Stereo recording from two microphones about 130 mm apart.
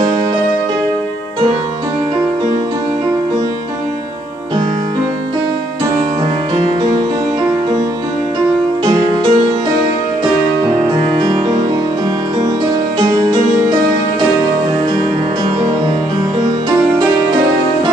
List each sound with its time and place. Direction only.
6.5 s music: 30° right (ahead or behind)
8.8 s music: 35° right (ahead or behind)
11.0 s music: 35° right (ahead or behind)